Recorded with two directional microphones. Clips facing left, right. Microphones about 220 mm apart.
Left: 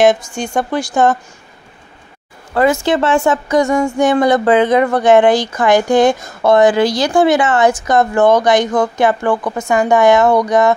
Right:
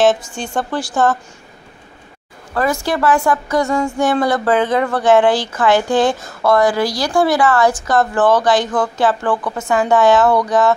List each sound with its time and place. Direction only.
0.0 s a woman's voice: 10° left (ahead or behind)
2.5 s a woman's voice: 25° left (ahead or behind)